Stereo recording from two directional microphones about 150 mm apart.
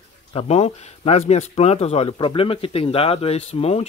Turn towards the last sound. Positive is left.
turn(degrees=45)  # may be behind; listen again after turning